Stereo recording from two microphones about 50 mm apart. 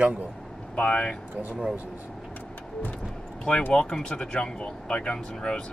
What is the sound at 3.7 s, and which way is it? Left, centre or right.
Speech, centre.